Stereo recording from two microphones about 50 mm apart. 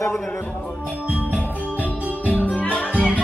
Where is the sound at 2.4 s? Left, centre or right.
Left.